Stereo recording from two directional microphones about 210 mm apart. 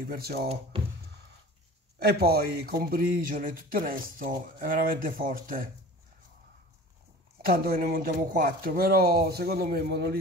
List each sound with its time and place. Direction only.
0.0 s speech: 45° right (ahead or behind)
0.7 s music: 25° right (ahead or behind)
2.0 s speech: 50° right (ahead or behind)
7.4 s speech: 45° right (ahead or behind)